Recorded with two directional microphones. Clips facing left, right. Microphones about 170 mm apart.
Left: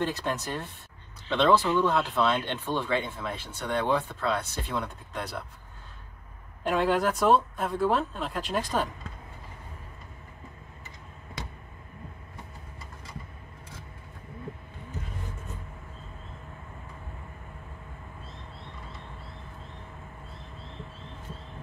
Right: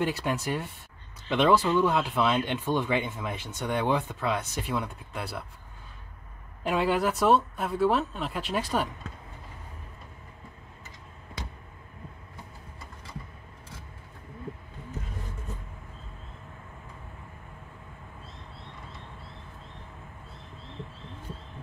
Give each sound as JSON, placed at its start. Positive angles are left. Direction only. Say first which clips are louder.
{"t": 0.0, "sound": "speech", "louder": "right 1 dB", "side_deg": -10}
{"t": 6.6, "sound": "speech", "louder": "left 1 dB", "side_deg": -5}